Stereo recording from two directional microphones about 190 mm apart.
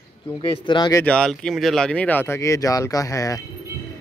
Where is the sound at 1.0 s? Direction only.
5° left (ahead or behind).